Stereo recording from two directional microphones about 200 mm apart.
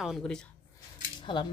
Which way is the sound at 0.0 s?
Centre (ahead or behind).